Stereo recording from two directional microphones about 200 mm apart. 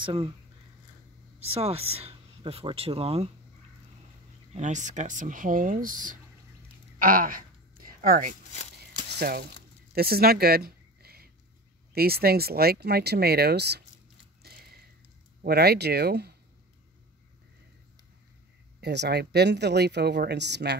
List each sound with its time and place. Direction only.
0.0 s speech: 25° right (ahead or behind)
1.4 s speech: 30° right (ahead or behind)
4.6 s speech: 40° right (ahead or behind)
7.0 s a sound: 45° right (ahead or behind)
9.2 s speech: 50° right (ahead or behind)
9.9 s a sound: 50° right (ahead or behind)
11.9 s speech: 50° right (ahead or behind)
14.4 s a sound: 50° right (ahead or behind)
15.4 s speech: 50° right (ahead or behind)
18.8 s speech: 55° right (ahead or behind)